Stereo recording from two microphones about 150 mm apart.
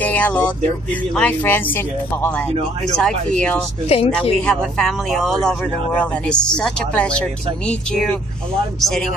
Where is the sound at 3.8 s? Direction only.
40° left (ahead or behind).